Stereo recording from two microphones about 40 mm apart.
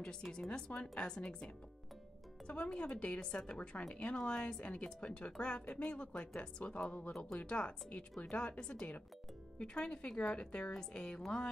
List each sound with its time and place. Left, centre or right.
0.3 s speech: left